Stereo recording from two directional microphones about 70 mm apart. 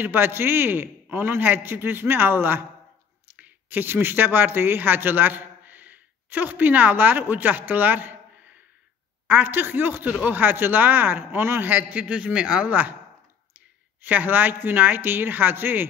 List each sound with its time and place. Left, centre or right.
0.0 s a man's voice: right
11.7 s speech: right
14.0 s speech: right